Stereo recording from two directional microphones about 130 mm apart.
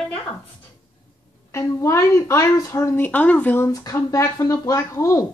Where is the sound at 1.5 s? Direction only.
25° left (ahead or behind).